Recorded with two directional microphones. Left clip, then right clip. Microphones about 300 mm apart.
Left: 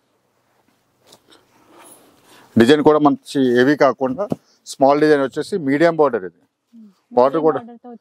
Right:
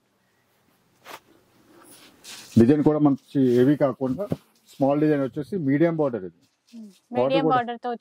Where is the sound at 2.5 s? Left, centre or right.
Centre.